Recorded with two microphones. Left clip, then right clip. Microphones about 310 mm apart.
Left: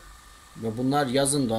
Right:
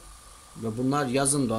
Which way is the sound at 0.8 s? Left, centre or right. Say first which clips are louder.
Left 2 dB; centre.